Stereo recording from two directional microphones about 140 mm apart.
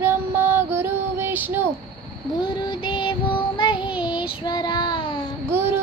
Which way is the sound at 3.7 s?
10° right (ahead or behind).